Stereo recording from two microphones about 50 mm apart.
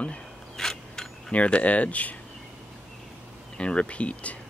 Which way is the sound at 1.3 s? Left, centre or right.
Left.